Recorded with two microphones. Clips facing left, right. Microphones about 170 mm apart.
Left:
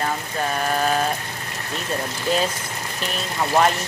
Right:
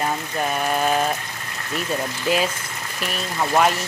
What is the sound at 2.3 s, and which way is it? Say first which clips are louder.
Speech: right 1 dB; 10° right (ahead or behind).